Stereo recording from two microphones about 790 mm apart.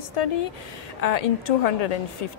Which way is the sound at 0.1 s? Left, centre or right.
Left.